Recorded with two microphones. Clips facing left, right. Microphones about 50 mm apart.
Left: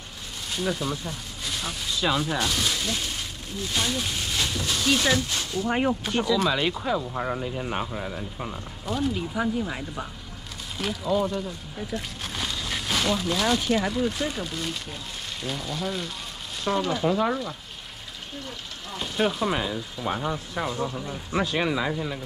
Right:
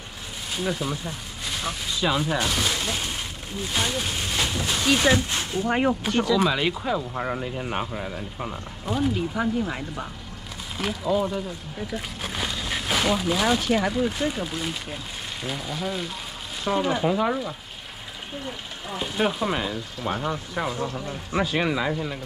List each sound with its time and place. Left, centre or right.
0.5 s speech: centre; by 5.9 s right
6.0 s speech: centre
18.4 s speech: centre
20.8 s speech: centre